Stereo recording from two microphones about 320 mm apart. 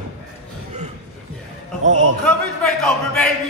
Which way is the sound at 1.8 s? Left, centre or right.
Right.